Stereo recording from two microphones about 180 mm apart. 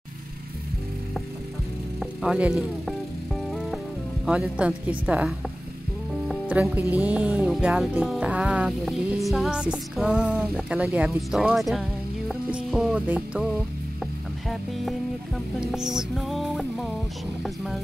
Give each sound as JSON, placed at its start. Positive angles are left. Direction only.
{"t": 2.0, "sound": "music", "side_deg": -5}
{"t": 4.3, "sound": "speech", "side_deg": -5}
{"t": 6.2, "sound": "music", "side_deg": -5}
{"t": 15.6, "sound": "music", "side_deg": -5}